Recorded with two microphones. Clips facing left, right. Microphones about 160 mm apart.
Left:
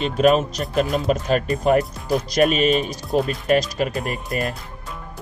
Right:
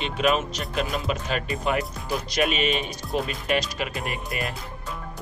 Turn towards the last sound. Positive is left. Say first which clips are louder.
# left 5 dB
turn(degrees=40)  # may be behind; listen again after turning